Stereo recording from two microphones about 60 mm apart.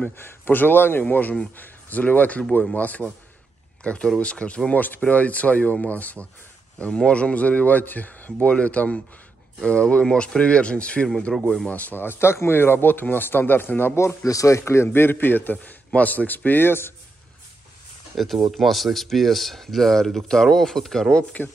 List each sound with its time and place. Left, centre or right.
0.2 s a man's voice: left
11.3 s speech: centre
11.7 s a man's voice: left
13.9 s speech: left
14.6 s a man's voice: left
18.1 s speech: centre